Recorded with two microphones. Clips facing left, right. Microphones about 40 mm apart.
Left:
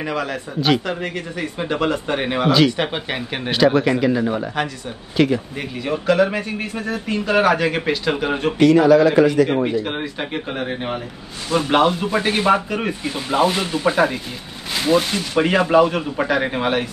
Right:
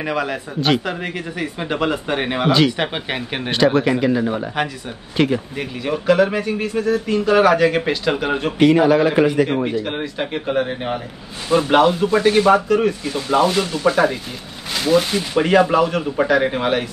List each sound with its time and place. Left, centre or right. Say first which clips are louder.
0.0 s speech: right 2 dB; centre
6.6 s speech: right 6 dB; left
7.1 s speech: right 1 dB; centre
8.5 s speech: left 1 dB; right
9.8 s speech: right 1 dB; centre
11.4 s speech: right 3 dB; right
12.0 s speech: right 5 dB; centre
14.8 s speech: right 1 dB; centre